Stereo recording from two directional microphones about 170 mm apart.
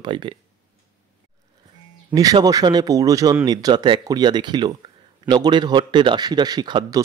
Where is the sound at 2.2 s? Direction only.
20° right (ahead or behind).